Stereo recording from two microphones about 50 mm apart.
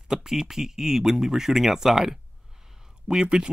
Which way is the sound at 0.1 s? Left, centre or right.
Centre.